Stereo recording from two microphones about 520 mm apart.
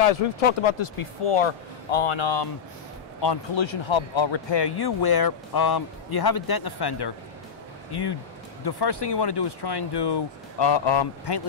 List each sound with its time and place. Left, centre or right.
0.1 s speech: left